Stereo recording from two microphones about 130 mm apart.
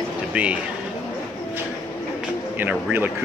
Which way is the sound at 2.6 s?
15° right (ahead or behind).